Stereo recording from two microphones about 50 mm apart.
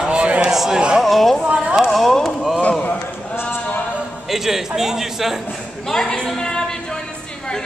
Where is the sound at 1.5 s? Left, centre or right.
Right.